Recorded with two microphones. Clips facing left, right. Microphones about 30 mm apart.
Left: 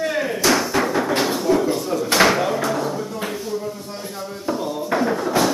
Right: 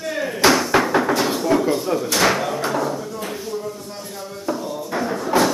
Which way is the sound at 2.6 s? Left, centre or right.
Centre.